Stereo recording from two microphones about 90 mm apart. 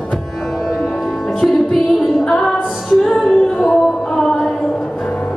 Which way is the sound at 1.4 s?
Centre (ahead or behind).